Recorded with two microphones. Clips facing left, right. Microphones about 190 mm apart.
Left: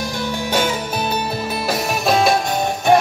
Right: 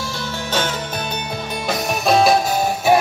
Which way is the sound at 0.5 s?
10° left (ahead or behind).